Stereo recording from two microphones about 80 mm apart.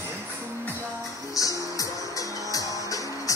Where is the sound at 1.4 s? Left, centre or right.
Left.